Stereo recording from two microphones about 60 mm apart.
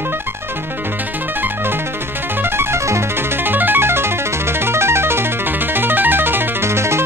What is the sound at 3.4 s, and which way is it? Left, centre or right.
Music, right.